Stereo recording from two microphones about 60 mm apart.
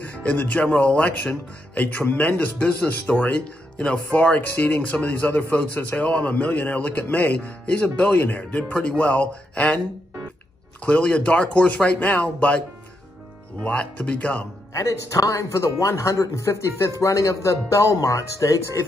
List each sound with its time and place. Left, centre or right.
0.2 s speech: left
1.8 s a man's voice: left
4.1 s a man's voice: left
10.8 s speech: left
14.7 s speech: left